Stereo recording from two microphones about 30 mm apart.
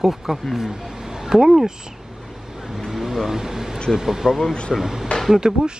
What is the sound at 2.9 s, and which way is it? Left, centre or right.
Vehicle, centre.